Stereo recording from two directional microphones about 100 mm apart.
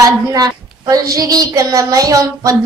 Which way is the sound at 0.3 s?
40° right (ahead or behind).